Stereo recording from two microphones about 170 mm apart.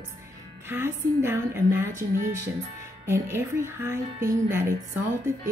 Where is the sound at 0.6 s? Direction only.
15° right (ahead or behind).